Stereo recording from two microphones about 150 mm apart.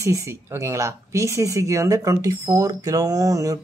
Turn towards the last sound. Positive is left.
turn(degrees=-20)  # may be behind; listen again after turning